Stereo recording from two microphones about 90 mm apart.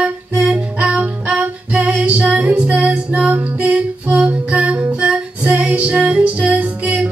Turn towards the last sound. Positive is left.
turn(degrees=-15)  # may be behind; listen again after turning